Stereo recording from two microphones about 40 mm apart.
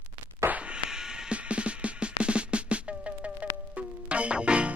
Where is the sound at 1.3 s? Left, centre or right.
Right.